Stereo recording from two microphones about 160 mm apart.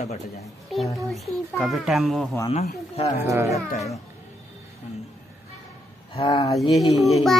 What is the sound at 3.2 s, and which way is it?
Speech, 20° right (ahead or behind).